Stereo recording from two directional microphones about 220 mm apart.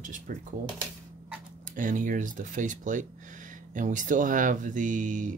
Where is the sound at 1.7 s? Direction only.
35° right (ahead or behind).